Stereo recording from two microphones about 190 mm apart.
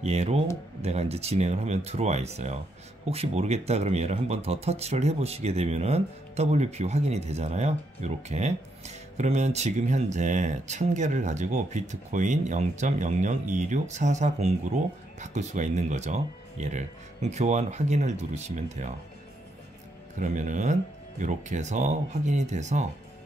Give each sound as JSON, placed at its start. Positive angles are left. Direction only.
{"t": 0.0, "sound": "speech", "side_deg": -35}
{"t": 20.2, "sound": "speech", "side_deg": -40}